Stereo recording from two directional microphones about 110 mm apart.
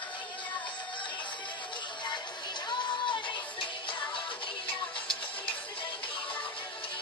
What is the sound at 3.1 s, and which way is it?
Music, 45° left (ahead or behind).